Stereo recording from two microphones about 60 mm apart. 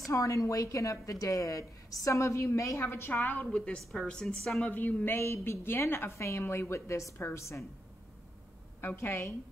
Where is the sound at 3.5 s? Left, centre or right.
Centre.